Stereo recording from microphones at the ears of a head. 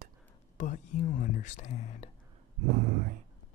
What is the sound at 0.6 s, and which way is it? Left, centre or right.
Speech, left.